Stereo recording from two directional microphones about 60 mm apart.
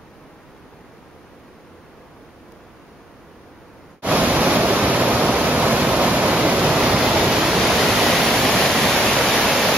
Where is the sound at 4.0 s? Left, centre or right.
Right.